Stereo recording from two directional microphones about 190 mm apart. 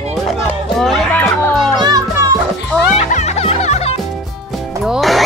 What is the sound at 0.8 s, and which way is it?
Music, 5° left (ahead or behind).